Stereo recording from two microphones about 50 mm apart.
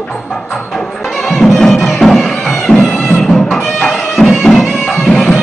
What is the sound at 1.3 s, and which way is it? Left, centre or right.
Music, centre.